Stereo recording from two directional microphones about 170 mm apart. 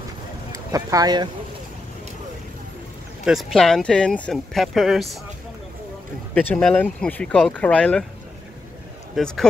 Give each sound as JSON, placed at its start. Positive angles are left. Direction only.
{"t": 0.5, "sound": "speech", "side_deg": -20}
{"t": 3.3, "sound": "speech", "side_deg": 0}
{"t": 6.3, "sound": "speech", "side_deg": 10}
{"t": 9.1, "sound": "speech", "side_deg": 5}